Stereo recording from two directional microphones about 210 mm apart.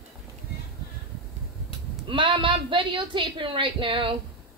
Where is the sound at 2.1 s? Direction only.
25° right (ahead or behind).